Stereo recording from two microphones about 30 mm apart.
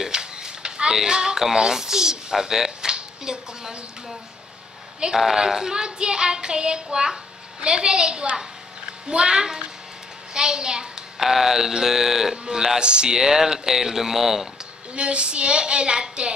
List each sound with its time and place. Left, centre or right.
0.0 s a sound: right
0.9 s child singing: right
1.4 s speech: centre
2.9 s a sound: right
5.1 s speech: centre
5.9 s child singing: right
11.1 s speech: centre
12.7 s child singing: right
13.1 s speech: centre
15.0 s child singing: right